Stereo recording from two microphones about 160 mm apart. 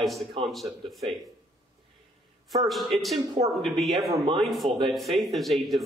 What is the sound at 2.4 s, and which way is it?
A man's voice, centre (ahead or behind).